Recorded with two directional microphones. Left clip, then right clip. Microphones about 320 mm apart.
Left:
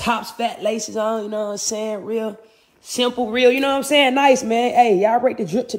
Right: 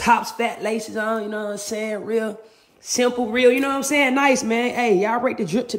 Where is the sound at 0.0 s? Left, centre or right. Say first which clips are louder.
Right 3 dB; centre.